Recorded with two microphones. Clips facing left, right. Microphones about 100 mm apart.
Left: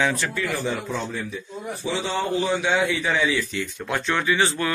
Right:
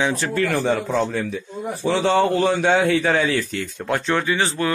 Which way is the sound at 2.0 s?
60° right (ahead or behind).